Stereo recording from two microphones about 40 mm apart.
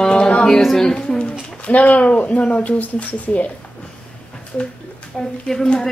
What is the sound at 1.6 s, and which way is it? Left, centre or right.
Speech, left.